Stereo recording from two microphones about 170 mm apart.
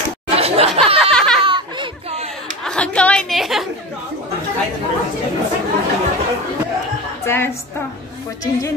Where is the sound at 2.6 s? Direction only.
5° left (ahead or behind).